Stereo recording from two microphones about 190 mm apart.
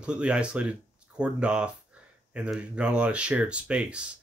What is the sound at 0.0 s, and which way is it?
Speech, 5° right (ahead or behind).